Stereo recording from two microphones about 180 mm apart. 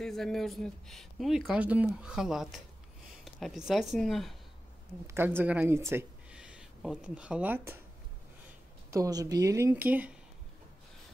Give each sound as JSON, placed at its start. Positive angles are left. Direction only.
{"t": 0.0, "sound": "speech", "side_deg": 0}
{"t": 5.0, "sound": "a woman's voice", "side_deg": -15}
{"t": 8.9, "sound": "speech", "side_deg": -20}